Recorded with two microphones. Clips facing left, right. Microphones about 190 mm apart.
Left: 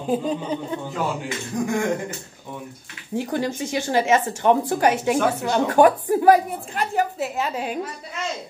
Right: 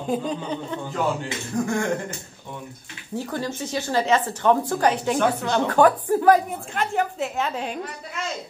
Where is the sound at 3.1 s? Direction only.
15° left (ahead or behind).